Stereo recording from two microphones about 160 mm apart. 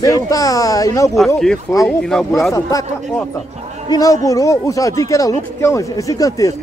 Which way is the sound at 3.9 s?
20° left (ahead or behind).